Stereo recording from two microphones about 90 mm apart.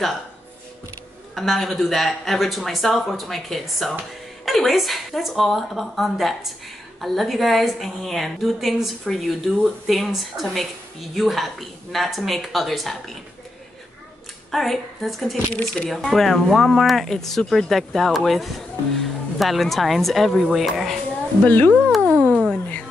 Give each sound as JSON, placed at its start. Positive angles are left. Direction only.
{"t": 1.3, "sound": "a woman's voice", "side_deg": 0}
{"t": 14.5, "sound": "a woman's voice", "side_deg": 0}
{"t": 15.5, "sound": "a woman's voice", "side_deg": 10}
{"t": 21.5, "sound": "speech", "side_deg": 15}
{"t": 22.0, "sound": "a sound", "side_deg": -25}
{"t": 22.3, "sound": "cat", "side_deg": 5}